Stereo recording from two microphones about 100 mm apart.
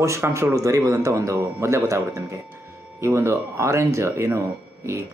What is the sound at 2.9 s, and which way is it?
Speech, 30° right (ahead or behind).